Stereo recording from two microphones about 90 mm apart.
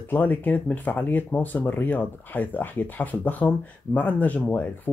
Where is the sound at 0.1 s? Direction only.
20° left (ahead or behind).